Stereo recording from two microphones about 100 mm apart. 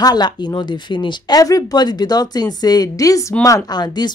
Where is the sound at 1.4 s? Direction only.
35° left (ahead or behind).